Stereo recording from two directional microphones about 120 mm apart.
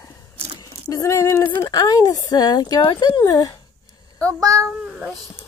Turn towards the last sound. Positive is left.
turn(degrees=-10)  # may be behind; listen again after turning